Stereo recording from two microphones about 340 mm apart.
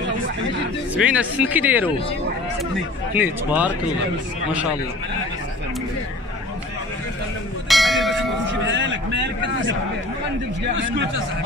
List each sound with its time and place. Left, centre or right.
0.9 s speech: centre
3.2 s speech: centre
7.6 s church bell: centre
8.6 s a sound: right
10.8 s speech: right